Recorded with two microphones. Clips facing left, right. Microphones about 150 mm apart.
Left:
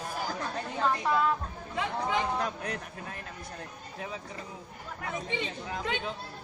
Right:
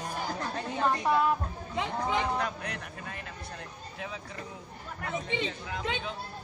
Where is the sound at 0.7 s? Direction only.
15° right (ahead or behind).